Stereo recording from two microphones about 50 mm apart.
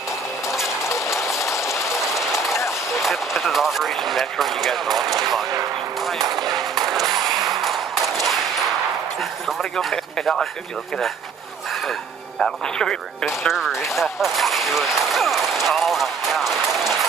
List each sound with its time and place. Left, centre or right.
0.8 s run: left
1.4 s train: left
2.1 s a sound: centre
3.0 s speech: centre
6.0 s gunshot: centre
9.6 s speech: centre
12.6 s speech: centre
13.2 s speech: centre